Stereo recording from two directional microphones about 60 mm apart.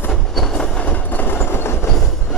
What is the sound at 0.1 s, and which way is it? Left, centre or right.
Train, centre.